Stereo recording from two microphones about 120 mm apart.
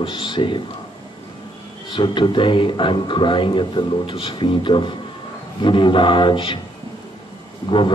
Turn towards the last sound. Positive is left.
turn(degrees=40)  # may be behind; listen again after turning